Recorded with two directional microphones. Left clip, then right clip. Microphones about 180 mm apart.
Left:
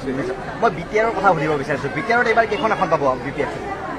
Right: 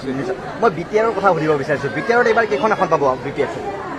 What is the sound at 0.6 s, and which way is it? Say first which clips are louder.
Speech: right 2 dB; 45° right (ahead or behind).